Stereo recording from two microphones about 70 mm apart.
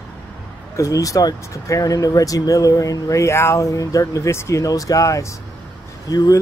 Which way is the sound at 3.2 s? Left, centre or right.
Left.